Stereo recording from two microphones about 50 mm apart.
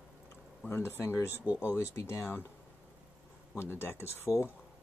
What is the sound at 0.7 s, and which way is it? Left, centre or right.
Speech, left.